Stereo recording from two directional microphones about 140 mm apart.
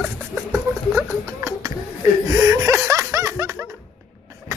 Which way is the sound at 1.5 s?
25° right (ahead or behind).